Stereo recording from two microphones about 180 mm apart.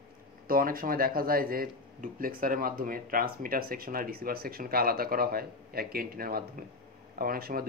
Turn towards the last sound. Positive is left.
turn(degrees=-55)  # may be behind; listen again after turning